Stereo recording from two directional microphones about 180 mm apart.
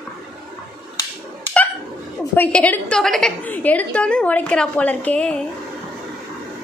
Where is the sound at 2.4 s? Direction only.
5° left (ahead or behind).